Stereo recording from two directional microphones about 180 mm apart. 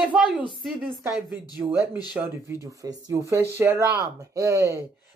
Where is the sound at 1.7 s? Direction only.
20° left (ahead or behind).